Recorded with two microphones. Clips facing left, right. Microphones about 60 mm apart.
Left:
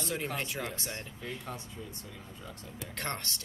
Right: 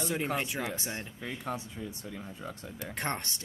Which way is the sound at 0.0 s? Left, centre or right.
Centre.